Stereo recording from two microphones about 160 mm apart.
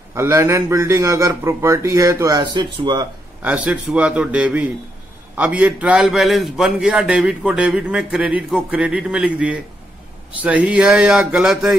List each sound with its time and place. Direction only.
0.1 s a man's voice: 15° right (ahead or behind)
3.4 s a man's voice: 10° right (ahead or behind)